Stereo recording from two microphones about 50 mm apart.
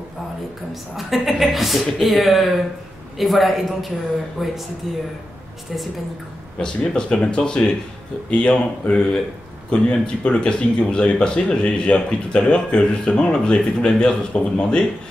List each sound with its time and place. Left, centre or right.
0.9 s speech: centre
6.6 s speech: centre